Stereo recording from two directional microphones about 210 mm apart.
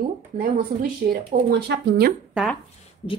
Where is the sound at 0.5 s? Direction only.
40° right (ahead or behind).